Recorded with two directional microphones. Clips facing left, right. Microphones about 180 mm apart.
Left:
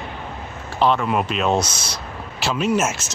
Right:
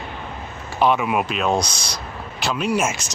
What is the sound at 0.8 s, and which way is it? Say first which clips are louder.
Speech: even; 10° right (ahead or behind).